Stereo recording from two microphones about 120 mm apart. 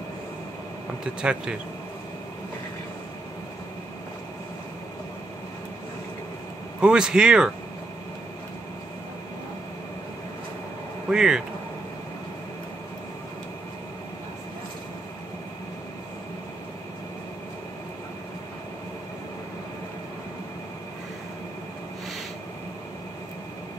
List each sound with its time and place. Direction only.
1.2 s speech: 10° right (ahead or behind)
6.8 s speech: 5° right (ahead or behind)
11.1 s speech: 5° right (ahead or behind)